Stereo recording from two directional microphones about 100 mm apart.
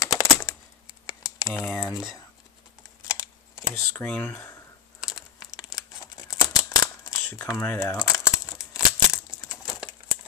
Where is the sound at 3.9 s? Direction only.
20° left (ahead or behind).